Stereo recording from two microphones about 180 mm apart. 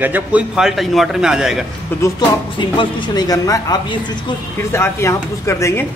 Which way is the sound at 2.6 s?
25° left (ahead or behind).